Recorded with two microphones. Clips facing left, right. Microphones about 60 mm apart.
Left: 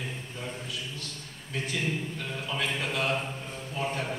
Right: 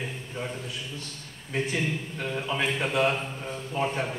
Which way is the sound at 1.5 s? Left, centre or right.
Right.